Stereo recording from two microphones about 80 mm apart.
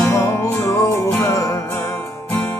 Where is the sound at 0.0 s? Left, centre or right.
Left.